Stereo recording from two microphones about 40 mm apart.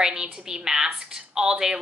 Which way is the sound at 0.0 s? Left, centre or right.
Centre.